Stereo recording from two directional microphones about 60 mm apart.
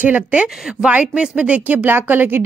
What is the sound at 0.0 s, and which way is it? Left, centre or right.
Speech, right.